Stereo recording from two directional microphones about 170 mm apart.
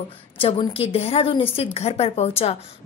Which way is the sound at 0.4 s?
35° left (ahead or behind).